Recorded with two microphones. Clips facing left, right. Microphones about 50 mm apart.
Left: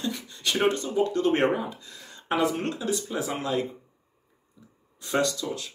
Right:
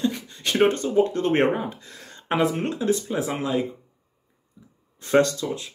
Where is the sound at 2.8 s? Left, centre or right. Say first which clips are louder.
Right 5 dB; right.